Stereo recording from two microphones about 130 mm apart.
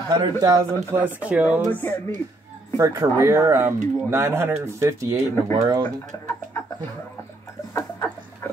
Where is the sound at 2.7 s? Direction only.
25° right (ahead or behind).